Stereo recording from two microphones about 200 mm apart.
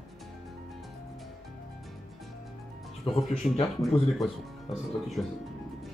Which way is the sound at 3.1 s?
25° left (ahead or behind).